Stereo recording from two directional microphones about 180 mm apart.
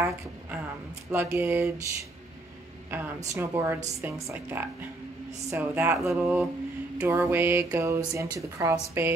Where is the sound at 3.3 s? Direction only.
15° right (ahead or behind).